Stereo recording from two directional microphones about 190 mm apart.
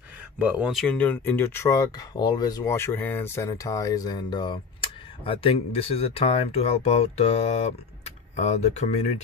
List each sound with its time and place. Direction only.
0.4 s speech: 5° right (ahead or behind); by 9.0 s 35° left (ahead or behind)